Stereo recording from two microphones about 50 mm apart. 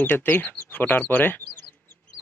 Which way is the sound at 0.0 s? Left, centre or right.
Left.